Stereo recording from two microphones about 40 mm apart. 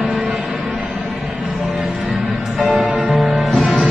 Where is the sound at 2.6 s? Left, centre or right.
Centre.